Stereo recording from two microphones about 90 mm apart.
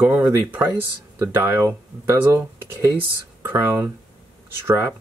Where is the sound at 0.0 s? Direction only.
20° right (ahead or behind).